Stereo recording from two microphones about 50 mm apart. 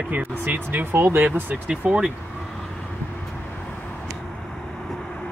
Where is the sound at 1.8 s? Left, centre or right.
Right.